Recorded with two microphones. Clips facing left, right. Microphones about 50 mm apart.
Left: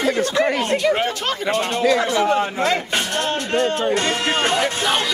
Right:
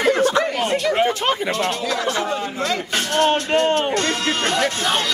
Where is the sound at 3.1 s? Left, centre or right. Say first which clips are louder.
Right 6 dB; right.